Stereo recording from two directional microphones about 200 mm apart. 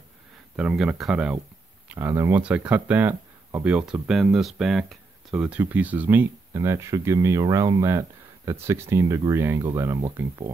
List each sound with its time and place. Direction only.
0.6 s speech: 5° right (ahead or behind)